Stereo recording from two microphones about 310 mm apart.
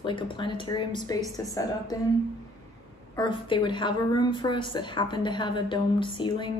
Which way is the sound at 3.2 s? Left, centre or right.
Centre.